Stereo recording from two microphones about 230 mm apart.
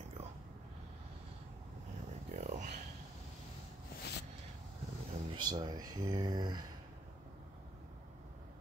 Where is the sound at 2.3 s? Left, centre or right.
Right.